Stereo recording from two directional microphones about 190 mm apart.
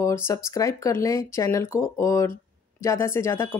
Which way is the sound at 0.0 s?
15° left (ahead or behind).